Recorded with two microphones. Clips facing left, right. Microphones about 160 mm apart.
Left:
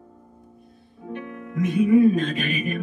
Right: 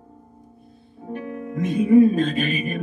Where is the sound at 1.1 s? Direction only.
35° right (ahead or behind).